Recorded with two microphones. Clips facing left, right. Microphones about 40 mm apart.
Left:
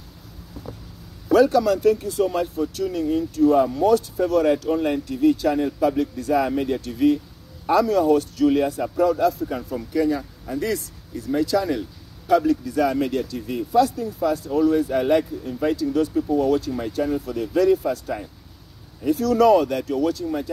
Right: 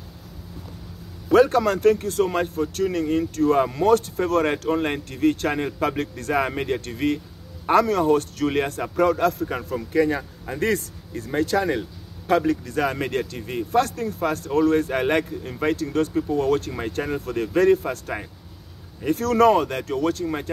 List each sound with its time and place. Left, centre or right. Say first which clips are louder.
1.3 s speech: left 1 dB; right
6.4 s speech: left 2 dB; right
9.8 s speech: right 1 dB; right
13.7 s speech: left 3 dB; right
19.8 s speech: left 1 dB; right